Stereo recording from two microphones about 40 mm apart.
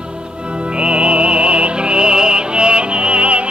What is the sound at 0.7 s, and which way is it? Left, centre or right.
Music, right.